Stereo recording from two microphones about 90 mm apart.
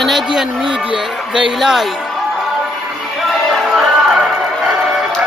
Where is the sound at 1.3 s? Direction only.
5° right (ahead or behind).